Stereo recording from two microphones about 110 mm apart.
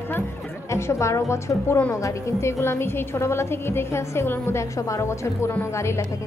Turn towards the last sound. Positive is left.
turn(degrees=25)  # may be behind; listen again after turning